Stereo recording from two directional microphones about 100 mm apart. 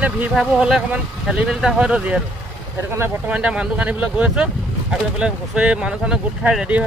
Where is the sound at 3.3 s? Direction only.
10° right (ahead or behind).